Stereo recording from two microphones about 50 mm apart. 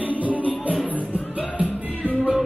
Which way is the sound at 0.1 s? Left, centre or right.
Right.